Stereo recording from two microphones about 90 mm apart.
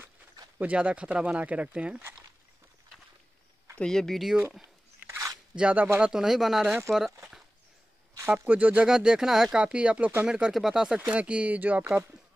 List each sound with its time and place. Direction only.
0.6 s speech: 15° right (ahead or behind)
3.8 s speech: 5° left (ahead or behind)
4.6 s a sound: 25° right (ahead or behind)
5.6 s speech: 15° right (ahead or behind)
8.5 s speech: 15° right (ahead or behind)